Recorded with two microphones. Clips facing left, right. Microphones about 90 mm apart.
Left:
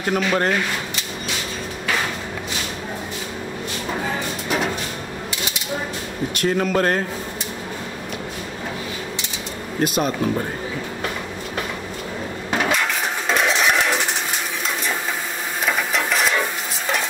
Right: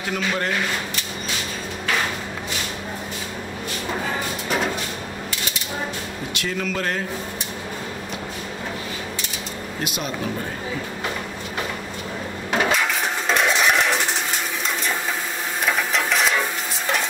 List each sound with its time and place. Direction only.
0.0 s speech: 45° left (ahead or behind)
6.3 s speech: 45° left (ahead or behind)
9.8 s speech: 40° left (ahead or behind)
12.4 s coin: centre (ahead or behind)
15.6 s stir: centre (ahead or behind)